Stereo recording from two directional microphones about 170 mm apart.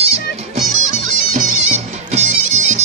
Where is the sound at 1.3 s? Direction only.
45° right (ahead or behind).